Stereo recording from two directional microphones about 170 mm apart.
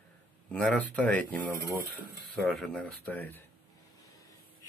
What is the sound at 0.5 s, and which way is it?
Speech, 5° left (ahead or behind).